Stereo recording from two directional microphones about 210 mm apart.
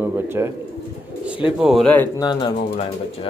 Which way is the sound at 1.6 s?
Centre (ahead or behind).